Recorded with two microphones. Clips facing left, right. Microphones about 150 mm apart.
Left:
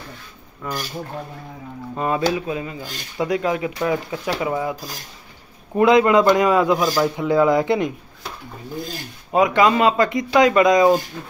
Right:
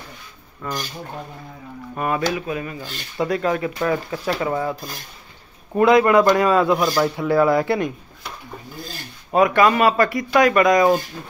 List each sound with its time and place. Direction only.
0.6 s speech: 5° left (ahead or behind)
2.0 s speech: 20° left (ahead or behind)
5.8 s speech: 20° left (ahead or behind)
6.8 s speech: centre (ahead or behind)
7.2 s speech: 20° left (ahead or behind)
9.3 s speech: 15° left (ahead or behind)